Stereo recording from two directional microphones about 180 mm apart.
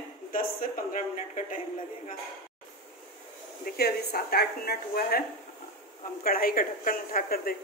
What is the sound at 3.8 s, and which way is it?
A woman's voice, 60° left (ahead or behind).